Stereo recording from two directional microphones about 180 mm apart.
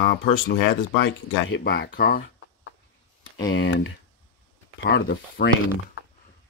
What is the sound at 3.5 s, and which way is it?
Speech, 90° left.